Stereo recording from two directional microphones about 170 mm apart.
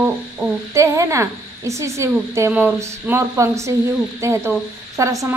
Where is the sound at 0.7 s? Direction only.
20° right (ahead or behind).